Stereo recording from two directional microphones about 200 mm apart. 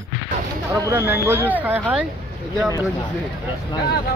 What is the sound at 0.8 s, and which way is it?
Speech, 10° right (ahead or behind).